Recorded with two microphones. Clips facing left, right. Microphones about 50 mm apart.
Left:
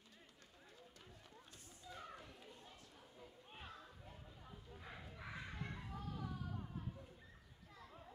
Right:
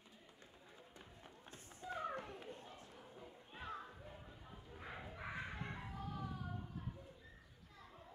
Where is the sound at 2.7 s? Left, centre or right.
Right.